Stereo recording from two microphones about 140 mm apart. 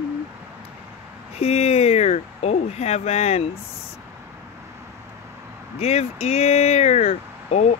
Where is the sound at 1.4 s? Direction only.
45° left (ahead or behind).